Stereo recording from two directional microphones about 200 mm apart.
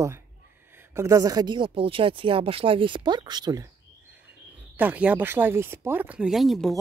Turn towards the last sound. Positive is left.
turn(degrees=0)  # may be behind; listen again after turning